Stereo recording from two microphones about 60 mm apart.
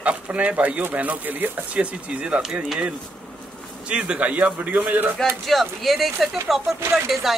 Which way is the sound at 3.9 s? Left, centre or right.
Centre.